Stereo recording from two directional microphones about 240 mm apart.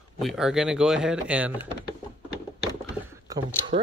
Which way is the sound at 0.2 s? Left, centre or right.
Centre.